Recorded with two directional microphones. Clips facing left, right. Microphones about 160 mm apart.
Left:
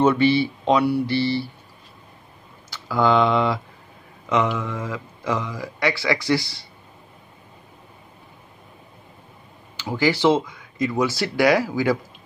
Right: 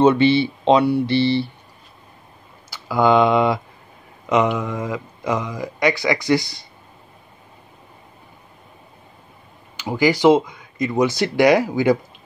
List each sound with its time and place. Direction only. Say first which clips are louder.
0.0 s speech: right 3 dB; 25° right (ahead or behind)
2.7 s speech: right 3 dB; 15° right (ahead or behind)
9.8 s speech: right 3 dB; 15° right (ahead or behind)